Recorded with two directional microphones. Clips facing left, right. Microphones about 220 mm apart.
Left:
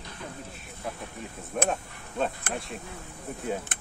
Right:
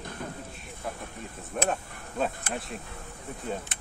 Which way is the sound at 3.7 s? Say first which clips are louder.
Left 3 dB; 55° left (ahead or behind).